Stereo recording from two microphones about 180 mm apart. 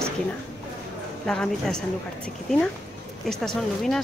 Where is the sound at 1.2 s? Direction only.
5° left (ahead or behind).